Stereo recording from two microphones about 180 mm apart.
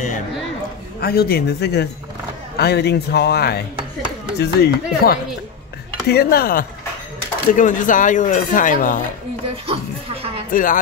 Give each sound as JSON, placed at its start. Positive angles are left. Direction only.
{"t": 1.0, "sound": "a man's voice", "side_deg": 60}
{"t": 7.5, "sound": "speech", "side_deg": 45}
{"t": 10.5, "sound": "speech", "side_deg": 50}